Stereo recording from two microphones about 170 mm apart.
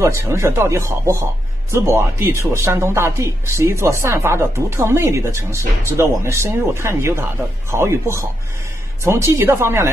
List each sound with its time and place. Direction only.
0.0 s speech: 15° right (ahead or behind)